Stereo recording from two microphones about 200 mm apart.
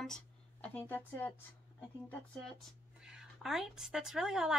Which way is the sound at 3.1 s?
Centre (ahead or behind).